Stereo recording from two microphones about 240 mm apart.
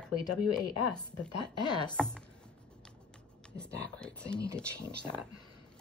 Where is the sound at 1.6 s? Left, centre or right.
Centre.